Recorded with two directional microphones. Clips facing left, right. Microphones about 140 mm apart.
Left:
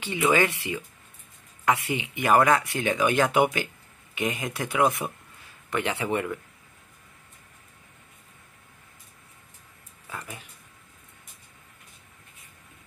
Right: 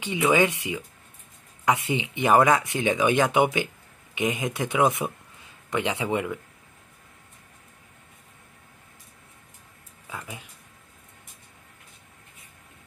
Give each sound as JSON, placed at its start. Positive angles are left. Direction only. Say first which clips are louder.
{"t": 0.0, "sound": "speech", "louder": "right 1 dB", "side_deg": -15}
{"t": 10.0, "sound": "speech", "louder": "right 1 dB", "side_deg": -10}